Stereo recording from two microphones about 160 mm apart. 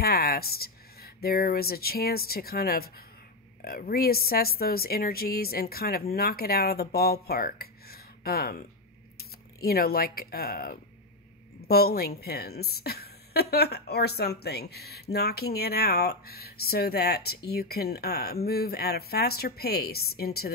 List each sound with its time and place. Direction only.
0.0 s a woman's voice: 75° left (ahead or behind)